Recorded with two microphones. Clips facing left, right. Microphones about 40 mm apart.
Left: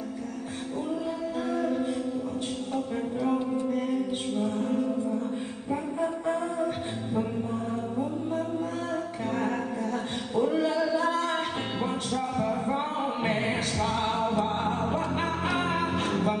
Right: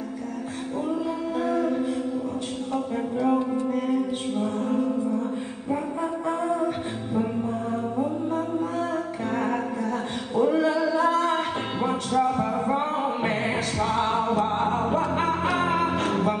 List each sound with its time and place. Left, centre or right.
1.7 s chant: centre
2.7 s music: centre
8.9 s music: centre
16.0 s music: centre